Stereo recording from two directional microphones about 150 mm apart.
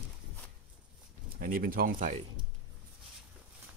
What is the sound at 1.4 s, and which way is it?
Speech, 70° right (ahead or behind).